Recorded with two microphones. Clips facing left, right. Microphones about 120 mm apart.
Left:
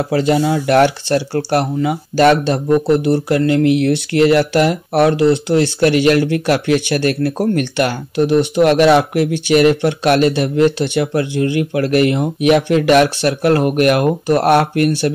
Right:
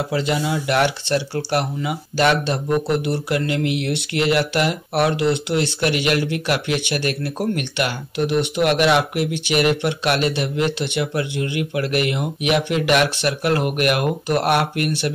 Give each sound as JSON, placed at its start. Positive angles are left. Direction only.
{"t": 0.1, "sound": "speech", "side_deg": 45}